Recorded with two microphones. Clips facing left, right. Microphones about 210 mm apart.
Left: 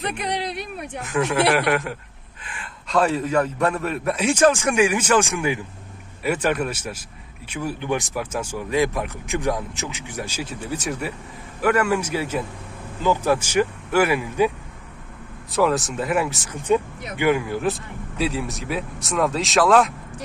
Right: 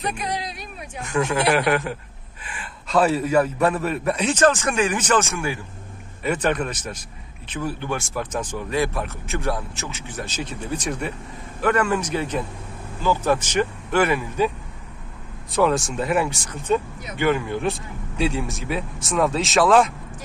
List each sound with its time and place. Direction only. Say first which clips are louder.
0.0 s speech: left 1 dB; 60° left (ahead or behind)
1.0 s a man's voice: left 1 dB; centre (ahead or behind)
4.3 s speech: left 2 dB; 10° left (ahead or behind)
15.5 s a man's voice: even; centre (ahead or behind)
16.7 s a man's voice: left 2 dB; 15° left (ahead or behind)